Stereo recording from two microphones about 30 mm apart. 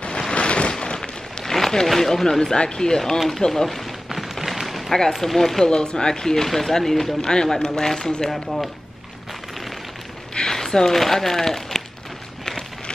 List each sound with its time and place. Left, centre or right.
0.3 s a sound: left
1.4 s a sound: centre
1.9 s speech: centre
2.5 s speech: left
3.6 s speech: centre
4.1 s a sound: centre
5.2 s speech: centre
5.7 s speech: left; by 7.2 s centre
7.2 s speech: left
8.3 s speech: centre
10.3 s a sound: left
10.7 s speech: centre